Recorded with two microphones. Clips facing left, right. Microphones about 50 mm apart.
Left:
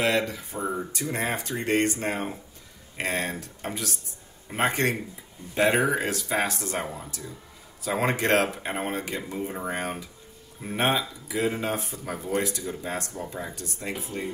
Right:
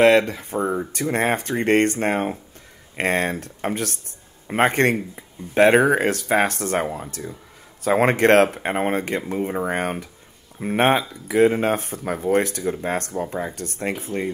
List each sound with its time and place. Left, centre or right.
0.0 s speech: right